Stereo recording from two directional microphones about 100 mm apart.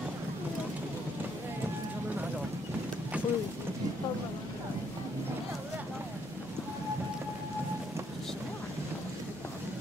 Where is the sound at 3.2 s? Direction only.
15° right (ahead or behind).